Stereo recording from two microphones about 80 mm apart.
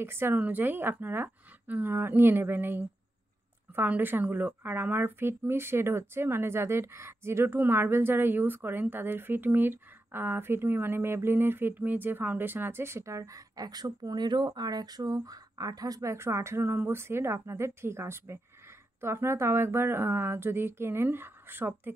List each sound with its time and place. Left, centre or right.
0.0 s a woman's voice: right